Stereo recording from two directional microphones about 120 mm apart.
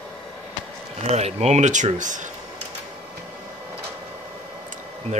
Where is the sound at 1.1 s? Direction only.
65° right (ahead or behind); by 2.3 s 90° right.